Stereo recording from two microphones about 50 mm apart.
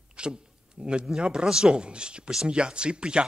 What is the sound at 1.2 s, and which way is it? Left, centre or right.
Speech, centre.